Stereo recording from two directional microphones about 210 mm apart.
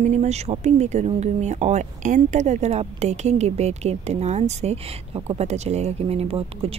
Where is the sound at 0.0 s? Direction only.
35° right (ahead or behind).